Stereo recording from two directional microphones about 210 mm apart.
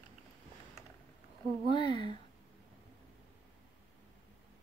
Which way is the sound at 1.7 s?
20° left (ahead or behind).